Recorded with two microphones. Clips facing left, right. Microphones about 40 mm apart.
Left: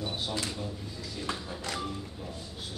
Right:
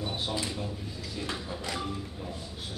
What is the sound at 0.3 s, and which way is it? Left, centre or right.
A man's voice, centre.